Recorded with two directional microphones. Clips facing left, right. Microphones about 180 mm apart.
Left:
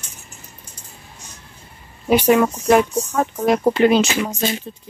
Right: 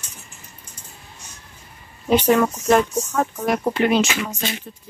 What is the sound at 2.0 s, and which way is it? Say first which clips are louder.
Speech: left 2 dB; 10° left (ahead or behind).